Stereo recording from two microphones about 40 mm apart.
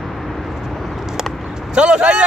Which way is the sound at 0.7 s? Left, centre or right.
Centre.